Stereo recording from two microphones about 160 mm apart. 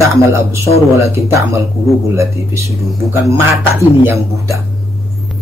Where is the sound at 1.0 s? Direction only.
20° right (ahead or behind).